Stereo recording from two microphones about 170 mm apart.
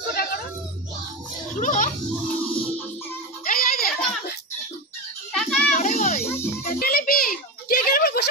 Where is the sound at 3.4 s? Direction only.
55° left (ahead or behind).